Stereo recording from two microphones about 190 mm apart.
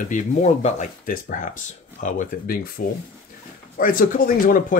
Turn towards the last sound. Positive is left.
turn(degrees=45)  # may be behind; listen again after turning